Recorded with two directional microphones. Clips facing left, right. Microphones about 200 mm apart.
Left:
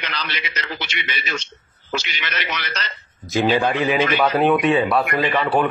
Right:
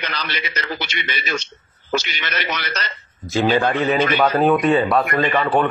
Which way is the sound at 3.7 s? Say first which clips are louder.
Right 1 dB; 10° left (ahead or behind).